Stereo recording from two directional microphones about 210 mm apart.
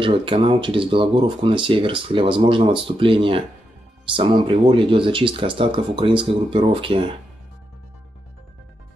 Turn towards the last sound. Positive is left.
turn(degrees=-25)  # may be behind; listen again after turning